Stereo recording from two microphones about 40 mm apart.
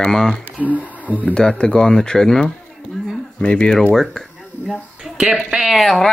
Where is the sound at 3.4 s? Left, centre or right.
Left.